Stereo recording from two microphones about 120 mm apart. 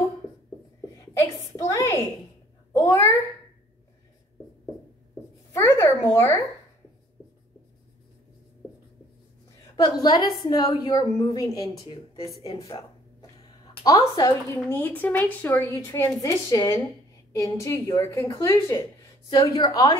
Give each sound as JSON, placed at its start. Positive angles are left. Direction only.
{"t": 1.6, "sound": "a woman's voice", "side_deg": 25}
{"t": 5.5, "sound": "a sound", "side_deg": 20}
{"t": 6.0, "sound": "speech", "side_deg": 15}
{"t": 9.8, "sound": "a woman's voice", "side_deg": 35}
{"t": 13.8, "sound": "a woman's voice", "side_deg": 30}
{"t": 14.5, "sound": "a woman's voice", "side_deg": 15}